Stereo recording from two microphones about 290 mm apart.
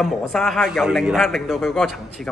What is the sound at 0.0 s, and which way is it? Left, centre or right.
A man's voice, centre.